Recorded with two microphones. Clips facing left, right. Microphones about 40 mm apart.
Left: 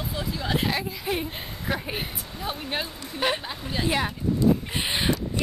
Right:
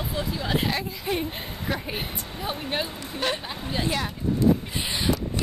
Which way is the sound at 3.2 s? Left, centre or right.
Centre.